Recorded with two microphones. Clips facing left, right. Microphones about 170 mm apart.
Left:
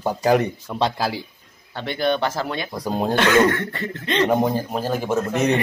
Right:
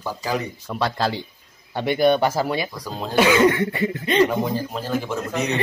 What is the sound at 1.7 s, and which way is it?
Speech, 10° right (ahead or behind).